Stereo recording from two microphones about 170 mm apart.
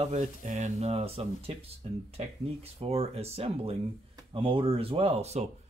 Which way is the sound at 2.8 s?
35° right (ahead or behind).